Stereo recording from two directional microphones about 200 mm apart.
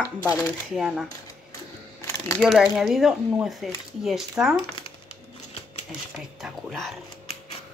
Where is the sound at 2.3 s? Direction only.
Centre (ahead or behind).